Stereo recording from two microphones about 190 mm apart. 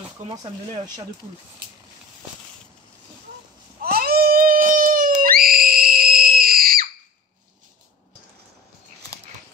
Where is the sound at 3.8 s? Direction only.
50° right (ahead or behind).